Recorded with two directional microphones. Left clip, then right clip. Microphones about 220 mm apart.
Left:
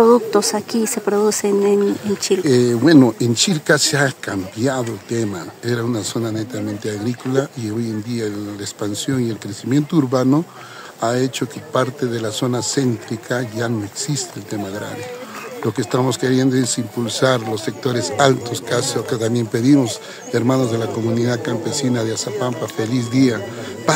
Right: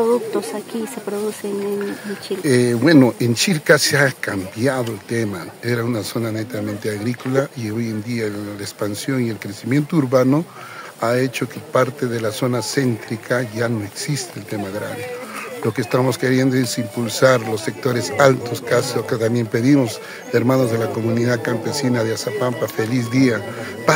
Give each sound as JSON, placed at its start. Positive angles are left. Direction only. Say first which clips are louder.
{"t": 0.0, "sound": "speech", "louder": "left 5 dB", "side_deg": 55}
{"t": 2.4, "sound": "speech", "louder": "right 1 dB", "side_deg": 0}
{"t": 15.7, "sound": "speech", "louder": "even", "side_deg": 0}